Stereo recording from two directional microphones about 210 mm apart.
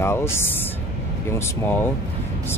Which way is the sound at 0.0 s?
10° left (ahead or behind).